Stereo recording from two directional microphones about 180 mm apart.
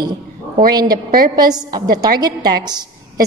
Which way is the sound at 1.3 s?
20° right (ahead or behind).